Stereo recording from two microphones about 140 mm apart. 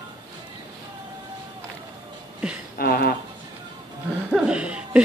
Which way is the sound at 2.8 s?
90° left.